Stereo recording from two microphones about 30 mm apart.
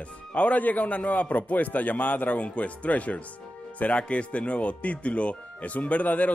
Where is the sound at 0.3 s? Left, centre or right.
Left.